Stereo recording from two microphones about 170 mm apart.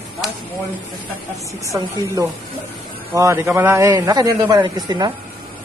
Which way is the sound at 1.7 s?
15° right (ahead or behind).